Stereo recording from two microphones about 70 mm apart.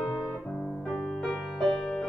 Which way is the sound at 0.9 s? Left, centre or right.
Centre.